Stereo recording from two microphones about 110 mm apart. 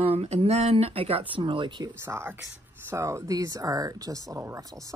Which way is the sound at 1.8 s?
25° right (ahead or behind).